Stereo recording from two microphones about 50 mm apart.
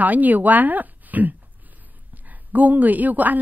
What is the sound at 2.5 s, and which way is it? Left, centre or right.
Speech, right.